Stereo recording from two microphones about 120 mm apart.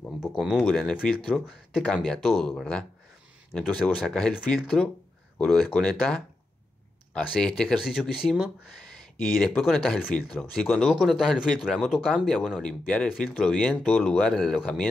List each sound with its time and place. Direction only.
0.3 s speech: 5° right (ahead or behind)
0.6 s speech: 5° left (ahead or behind)
3.5 s speech: 5° left (ahead or behind)